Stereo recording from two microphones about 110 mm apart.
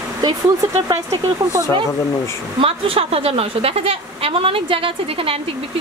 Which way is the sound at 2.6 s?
60° right (ahead or behind).